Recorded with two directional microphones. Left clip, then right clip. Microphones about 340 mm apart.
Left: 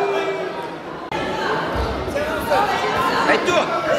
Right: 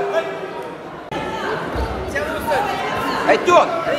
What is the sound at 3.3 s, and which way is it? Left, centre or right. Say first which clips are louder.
Chatter: right 8 dB; centre.